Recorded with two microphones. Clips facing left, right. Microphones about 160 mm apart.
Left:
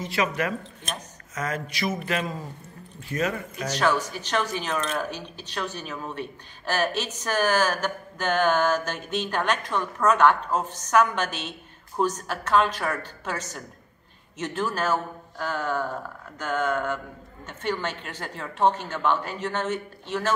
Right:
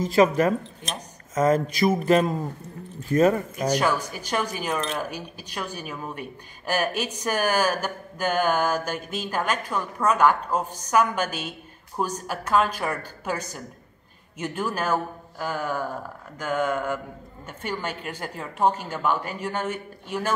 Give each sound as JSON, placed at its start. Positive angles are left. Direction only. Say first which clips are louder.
{"t": 0.1, "sound": "speech", "louder": "right 8 dB", "side_deg": -40}
{"t": 3.6, "sound": "a woman's voice", "louder": "even", "side_deg": -10}